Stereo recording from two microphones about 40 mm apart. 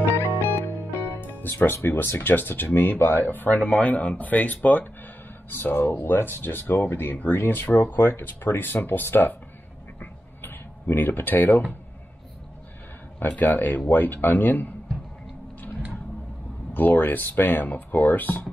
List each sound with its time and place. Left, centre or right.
0.9 s music: left
2.0 s speech: left
2.3 s speech: left
5.5 s speech: left
9.9 s a sound: left
13.4 s speech: left
16.7 s speech: left
17.6 s speech: left